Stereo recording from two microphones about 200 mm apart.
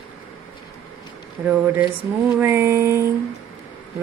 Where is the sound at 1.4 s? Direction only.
10° right (ahead or behind).